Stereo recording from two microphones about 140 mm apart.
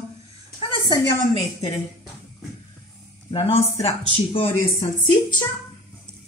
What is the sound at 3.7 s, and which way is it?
Speech, 45° left (ahead or behind).